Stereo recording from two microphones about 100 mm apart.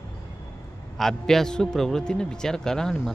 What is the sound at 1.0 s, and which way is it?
A man's voice, 5° left (ahead or behind).